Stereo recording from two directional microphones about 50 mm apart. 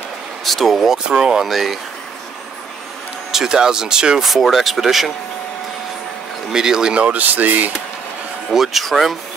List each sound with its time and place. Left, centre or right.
0.5 s speech: centre
0.9 s speech: centre
1.5 s speech: centre
3.3 s speech: centre
4.2 s speech: centre
6.5 s speech: centre
7.0 s speech: right
8.5 s speech: centre